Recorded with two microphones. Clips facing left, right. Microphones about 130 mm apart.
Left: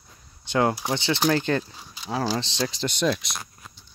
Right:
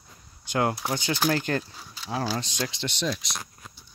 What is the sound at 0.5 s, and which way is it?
Speech, 25° left (ahead or behind).